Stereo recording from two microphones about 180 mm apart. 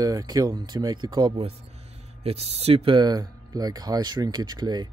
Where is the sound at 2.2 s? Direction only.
35° right (ahead or behind).